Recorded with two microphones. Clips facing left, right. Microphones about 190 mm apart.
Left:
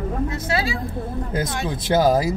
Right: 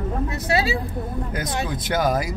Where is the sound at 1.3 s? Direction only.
25° left (ahead or behind).